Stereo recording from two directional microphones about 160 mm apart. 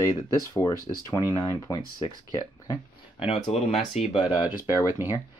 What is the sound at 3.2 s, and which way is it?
Speech, 40° left (ahead or behind).